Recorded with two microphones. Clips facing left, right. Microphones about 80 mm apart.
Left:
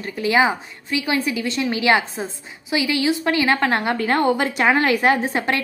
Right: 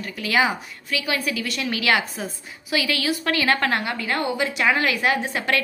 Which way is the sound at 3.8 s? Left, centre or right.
Left.